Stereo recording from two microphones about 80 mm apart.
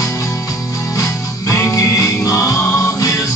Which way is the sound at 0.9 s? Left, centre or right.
Left.